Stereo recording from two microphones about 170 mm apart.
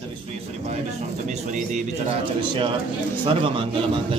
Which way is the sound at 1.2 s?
45° right (ahead or behind).